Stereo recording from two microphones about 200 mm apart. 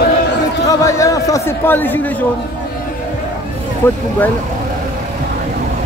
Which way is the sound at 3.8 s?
10° left (ahead or behind).